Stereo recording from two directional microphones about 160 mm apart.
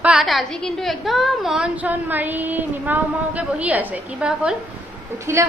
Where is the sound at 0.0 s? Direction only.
5° right (ahead or behind).